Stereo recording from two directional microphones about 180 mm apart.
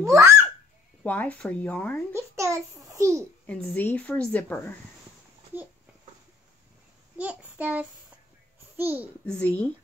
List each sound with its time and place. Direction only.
0.0 s a child's voice: 15° right (ahead or behind)
1.0 s a woman's voice: 10° left (ahead or behind)
2.1 s a child's voice: 15° right (ahead or behind)
3.4 s a woman's voice: 10° left (ahead or behind)
7.2 s a child's voice: 10° right (ahead or behind)
9.2 s a woman's voice: 5° left (ahead or behind)